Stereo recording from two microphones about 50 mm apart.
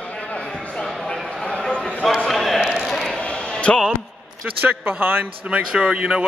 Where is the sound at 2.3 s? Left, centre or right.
Centre.